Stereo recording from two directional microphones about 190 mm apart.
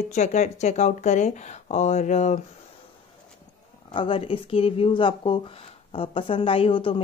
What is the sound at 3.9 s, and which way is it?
Speech, 25° left (ahead or behind).